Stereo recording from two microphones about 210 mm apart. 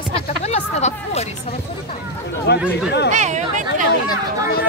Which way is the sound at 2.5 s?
55° left (ahead or behind).